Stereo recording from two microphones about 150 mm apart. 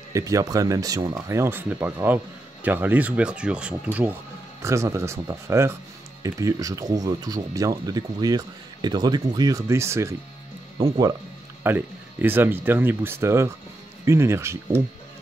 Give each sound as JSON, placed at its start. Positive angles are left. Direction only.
{"t": 0.1, "sound": "speech", "side_deg": -20}
{"t": 11.6, "sound": "speech", "side_deg": -15}